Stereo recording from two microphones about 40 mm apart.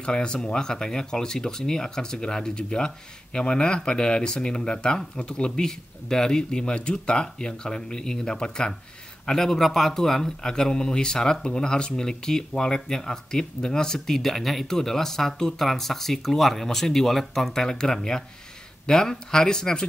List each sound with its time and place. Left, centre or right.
0.0 s speech: left